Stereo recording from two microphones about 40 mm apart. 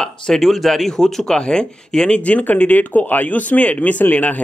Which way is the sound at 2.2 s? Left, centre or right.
Left.